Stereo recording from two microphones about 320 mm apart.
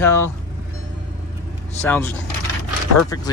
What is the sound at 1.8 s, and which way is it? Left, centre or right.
Speech, centre.